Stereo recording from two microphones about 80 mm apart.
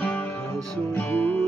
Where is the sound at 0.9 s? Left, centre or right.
Left.